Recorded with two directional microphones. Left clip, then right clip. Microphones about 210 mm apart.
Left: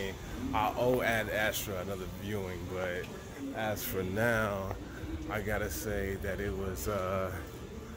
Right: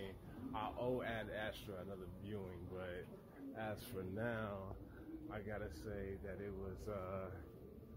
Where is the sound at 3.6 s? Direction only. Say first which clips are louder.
Left 12 dB; centre (ahead or behind).